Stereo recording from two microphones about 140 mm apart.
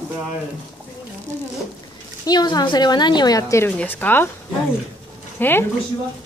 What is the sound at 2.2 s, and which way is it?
A woman's voice, 30° left (ahead or behind).